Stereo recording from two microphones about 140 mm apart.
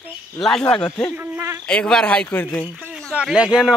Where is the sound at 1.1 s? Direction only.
15° right (ahead or behind).